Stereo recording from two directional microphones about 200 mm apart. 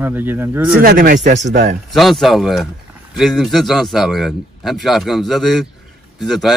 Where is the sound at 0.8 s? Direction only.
45° right (ahead or behind).